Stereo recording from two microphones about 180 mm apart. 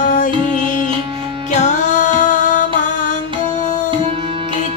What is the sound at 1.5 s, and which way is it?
Music, 40° left (ahead or behind).